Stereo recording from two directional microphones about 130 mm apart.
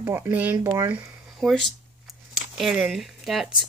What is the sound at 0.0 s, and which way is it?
Speech, 20° right (ahead or behind).